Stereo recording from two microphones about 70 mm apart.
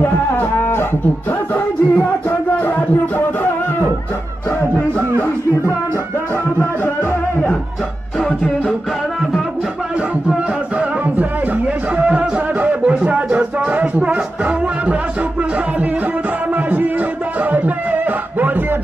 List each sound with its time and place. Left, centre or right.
0.0 s music: left
12.0 s music: centre
17.5 s a sound: right